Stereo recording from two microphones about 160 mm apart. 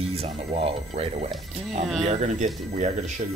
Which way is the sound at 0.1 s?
40° right (ahead or behind).